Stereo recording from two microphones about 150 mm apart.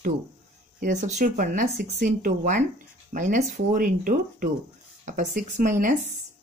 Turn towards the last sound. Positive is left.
turn(degrees=-60)  # may be behind; listen again after turning